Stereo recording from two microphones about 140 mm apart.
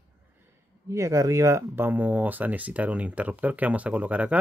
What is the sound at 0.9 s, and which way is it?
Speech, 25° right (ahead or behind).